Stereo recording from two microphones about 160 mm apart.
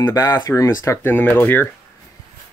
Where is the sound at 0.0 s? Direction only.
20° left (ahead or behind).